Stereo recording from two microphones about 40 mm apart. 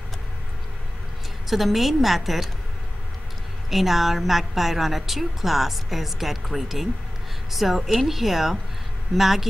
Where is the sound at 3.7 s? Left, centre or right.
Centre.